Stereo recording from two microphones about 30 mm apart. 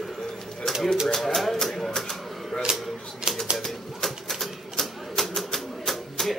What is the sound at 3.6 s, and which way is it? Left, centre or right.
Typewriter, centre.